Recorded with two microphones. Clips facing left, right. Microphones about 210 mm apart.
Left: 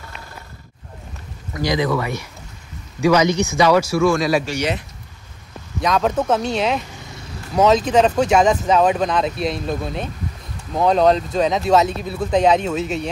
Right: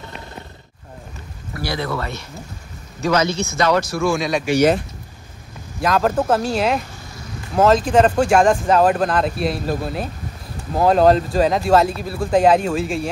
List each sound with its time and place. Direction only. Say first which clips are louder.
1.5 s speech: left 5 dB; 20° left (ahead or behind); by 4.5 s centre (ahead or behind)
5.8 s speech: right 1 dB; 5° right (ahead or behind)